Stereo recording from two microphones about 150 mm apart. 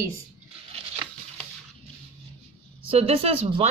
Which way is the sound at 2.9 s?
40° right (ahead or behind).